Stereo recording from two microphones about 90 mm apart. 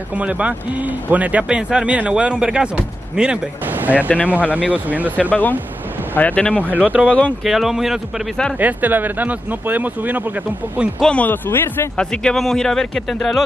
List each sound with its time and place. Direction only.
0.1 s speech: 15° right (ahead or behind)
5.3 s speech: 20° left (ahead or behind)
6.7 s speech: 15° right (ahead or behind)
7.1 s speech: 15° left (ahead or behind)
7.4 s speech: 5° right (ahead or behind)
8.5 s speech: 20° right (ahead or behind)
11.0 s speech: 15° left (ahead or behind)
12.0 s speech: 10° left (ahead or behind)